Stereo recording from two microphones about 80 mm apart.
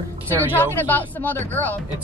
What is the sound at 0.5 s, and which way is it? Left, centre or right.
A woman's voice, left.